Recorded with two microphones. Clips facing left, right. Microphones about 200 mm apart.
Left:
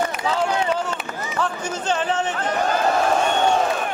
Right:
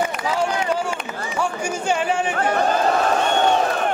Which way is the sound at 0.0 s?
10° right (ahead or behind).